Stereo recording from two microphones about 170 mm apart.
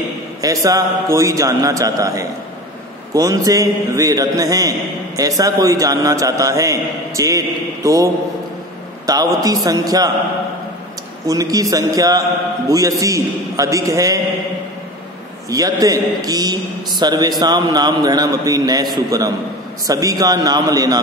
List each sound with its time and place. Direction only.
0.4 s a man's voice: 20° right (ahead or behind)
11.2 s a man's voice: 20° right (ahead or behind)
15.5 s a man's voice: 20° right (ahead or behind)